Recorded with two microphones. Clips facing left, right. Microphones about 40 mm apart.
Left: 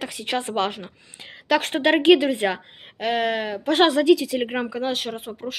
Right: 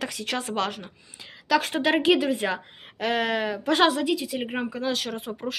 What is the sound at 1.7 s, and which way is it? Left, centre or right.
Speech, left.